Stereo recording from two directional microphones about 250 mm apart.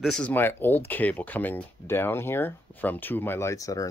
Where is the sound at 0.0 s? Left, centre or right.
Centre.